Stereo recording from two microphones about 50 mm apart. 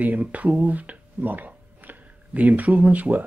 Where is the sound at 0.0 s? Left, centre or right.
Right.